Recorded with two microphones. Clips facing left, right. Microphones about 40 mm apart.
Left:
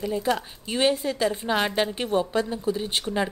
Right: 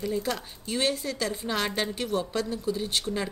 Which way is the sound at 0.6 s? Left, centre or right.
Left.